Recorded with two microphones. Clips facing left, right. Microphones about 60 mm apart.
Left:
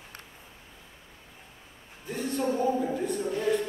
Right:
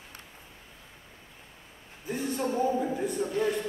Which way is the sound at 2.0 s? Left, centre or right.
Centre.